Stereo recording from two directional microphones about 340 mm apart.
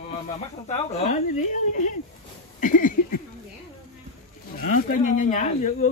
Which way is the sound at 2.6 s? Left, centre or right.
Left.